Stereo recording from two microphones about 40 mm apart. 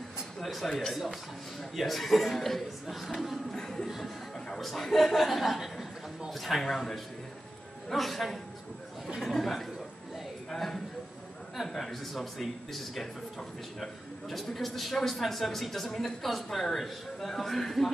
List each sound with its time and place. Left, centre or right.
0.4 s a man's voice: centre
3.5 s music: centre
4.6 s speech: centre
10.5 s a sound: centre
11.7 s speech: centre